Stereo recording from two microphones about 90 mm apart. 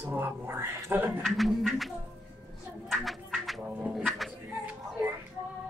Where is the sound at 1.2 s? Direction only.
Centre (ahead or behind).